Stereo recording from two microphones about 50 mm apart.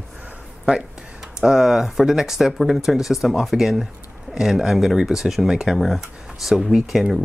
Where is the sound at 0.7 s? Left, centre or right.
Centre.